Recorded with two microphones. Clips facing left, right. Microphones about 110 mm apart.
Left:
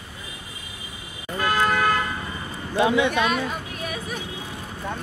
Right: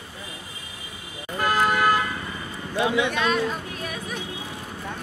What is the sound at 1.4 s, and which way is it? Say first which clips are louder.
Toot: even; 10° right (ahead or behind).